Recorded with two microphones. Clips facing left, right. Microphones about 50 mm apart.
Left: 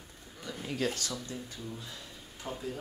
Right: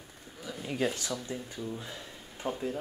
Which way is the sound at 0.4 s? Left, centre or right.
Centre.